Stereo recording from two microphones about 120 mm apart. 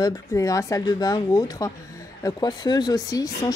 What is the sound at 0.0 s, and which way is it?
Speech, 30° left (ahead or behind).